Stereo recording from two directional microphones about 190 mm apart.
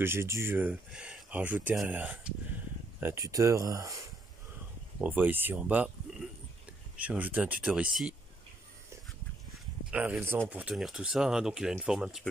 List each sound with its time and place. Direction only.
0.0 s speech: 15° right (ahead or behind)
5.0 s speech: 10° right (ahead or behind)
7.0 s speech: 10° right (ahead or behind)
9.8 s speech: 5° right (ahead or behind)